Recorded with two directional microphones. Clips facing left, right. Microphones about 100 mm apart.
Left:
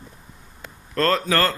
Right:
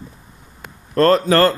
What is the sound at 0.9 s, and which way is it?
Speech, 25° right (ahead or behind).